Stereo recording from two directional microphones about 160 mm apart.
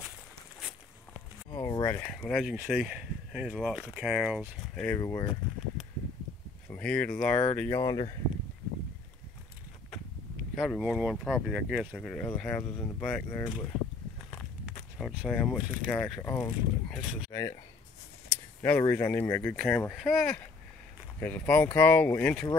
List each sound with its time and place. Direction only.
1.5 s a sound: 20° left (ahead or behind)
2.0 s speech: 5° left (ahead or behind)
4.8 s speech: 15° left (ahead or behind)
6.7 s speech: 10° left (ahead or behind)
7.8 s speech: 25° left (ahead or behind)
9.8 s a sound: 5° left (ahead or behind)
10.8 s speech: 5° right (ahead or behind)
12.1 s speech: 5° left (ahead or behind)
15.0 s speech: centre (ahead or behind); by 17.6 s 20° left (ahead or behind)
18.6 s speech: 15° left (ahead or behind)